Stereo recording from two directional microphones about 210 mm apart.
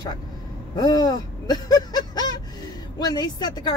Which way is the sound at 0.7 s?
20° left (ahead or behind).